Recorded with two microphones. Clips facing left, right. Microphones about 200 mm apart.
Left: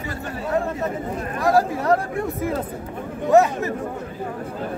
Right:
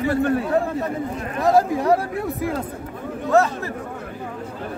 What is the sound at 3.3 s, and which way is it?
Speech, 15° left (ahead or behind).